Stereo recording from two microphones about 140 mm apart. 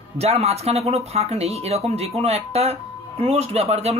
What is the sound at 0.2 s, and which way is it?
Speech, 45° right (ahead or behind).